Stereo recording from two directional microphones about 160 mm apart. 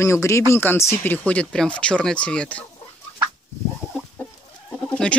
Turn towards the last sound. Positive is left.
turn(degrees=5)  # may be behind; listen again after turning